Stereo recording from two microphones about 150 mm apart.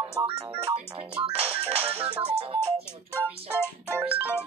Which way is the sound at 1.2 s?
40° right (ahead or behind).